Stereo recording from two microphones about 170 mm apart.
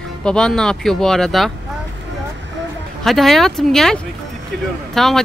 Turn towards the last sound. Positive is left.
turn(degrees=0)  # may be behind; listen again after turning